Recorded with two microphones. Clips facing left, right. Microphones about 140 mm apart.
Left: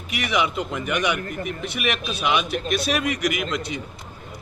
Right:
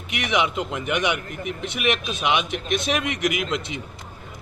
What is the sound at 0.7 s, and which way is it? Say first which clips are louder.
Speech: even; 20° right (ahead or behind).